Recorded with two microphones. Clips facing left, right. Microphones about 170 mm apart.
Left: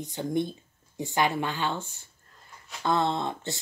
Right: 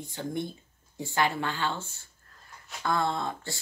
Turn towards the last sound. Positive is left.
turn(degrees=20)  # may be behind; listen again after turning